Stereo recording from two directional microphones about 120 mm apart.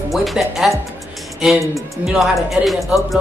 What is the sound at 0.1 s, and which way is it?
Speech, centre (ahead or behind).